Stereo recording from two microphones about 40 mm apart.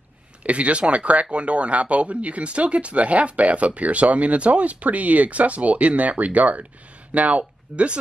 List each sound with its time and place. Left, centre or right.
0.4 s speech: right